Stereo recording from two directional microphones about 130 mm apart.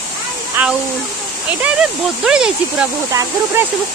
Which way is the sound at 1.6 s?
5° right (ahead or behind).